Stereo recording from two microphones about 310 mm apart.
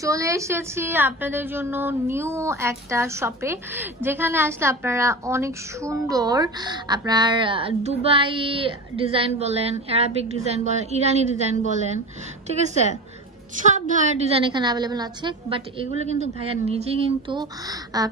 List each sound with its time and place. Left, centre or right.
0.0 s a woman's voice: centre
13.7 s a woman's voice: right